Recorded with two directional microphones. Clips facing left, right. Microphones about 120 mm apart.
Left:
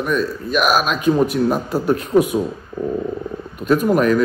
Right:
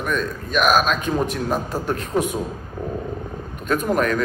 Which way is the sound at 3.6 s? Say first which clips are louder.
Left 5 dB; 10° left (ahead or behind).